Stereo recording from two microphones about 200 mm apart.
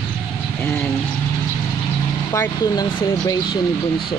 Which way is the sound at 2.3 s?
15° left (ahead or behind).